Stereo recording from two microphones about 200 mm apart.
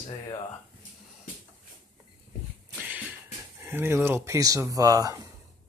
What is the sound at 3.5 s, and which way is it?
Speech, 10° right (ahead or behind).